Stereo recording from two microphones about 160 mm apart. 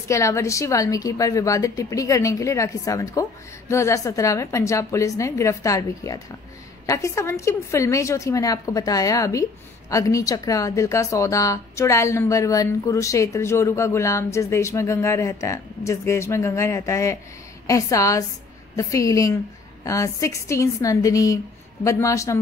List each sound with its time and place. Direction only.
0.1 s a woman's voice: 20° left (ahead or behind)